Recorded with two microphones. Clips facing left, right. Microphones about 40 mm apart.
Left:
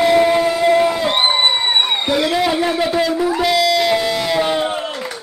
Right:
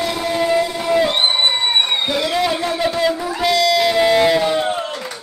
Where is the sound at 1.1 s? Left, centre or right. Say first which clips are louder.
Left 2 dB; centre.